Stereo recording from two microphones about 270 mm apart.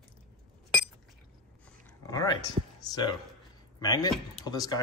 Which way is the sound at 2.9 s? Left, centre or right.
Centre.